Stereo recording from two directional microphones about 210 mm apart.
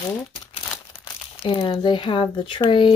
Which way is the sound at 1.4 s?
25° left (ahead or behind).